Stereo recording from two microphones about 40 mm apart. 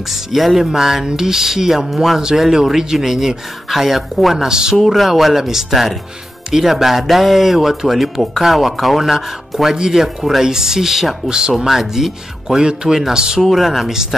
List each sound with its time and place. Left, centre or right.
0.1 s speech: centre
4.5 s speech: centre
4.8 s speech: centre
11.2 s speech: centre
13.4 s speech: centre